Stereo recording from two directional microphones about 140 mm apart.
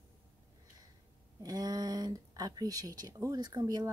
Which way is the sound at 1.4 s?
25° right (ahead or behind).